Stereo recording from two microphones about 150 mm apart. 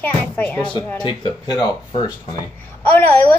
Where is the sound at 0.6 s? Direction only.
30° left (ahead or behind).